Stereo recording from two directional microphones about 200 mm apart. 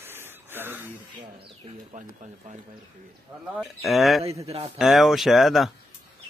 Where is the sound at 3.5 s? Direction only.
Centre (ahead or behind).